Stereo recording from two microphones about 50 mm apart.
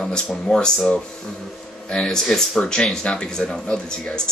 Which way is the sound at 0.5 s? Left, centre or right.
Centre.